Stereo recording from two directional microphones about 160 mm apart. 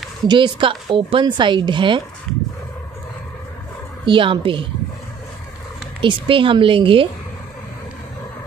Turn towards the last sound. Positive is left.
turn(degrees=-35)  # may be behind; listen again after turning